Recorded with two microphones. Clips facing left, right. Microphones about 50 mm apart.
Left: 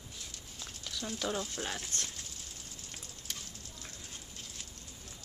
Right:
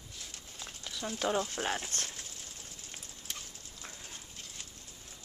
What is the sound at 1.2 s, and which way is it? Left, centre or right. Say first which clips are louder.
Speech: right 5 dB; right.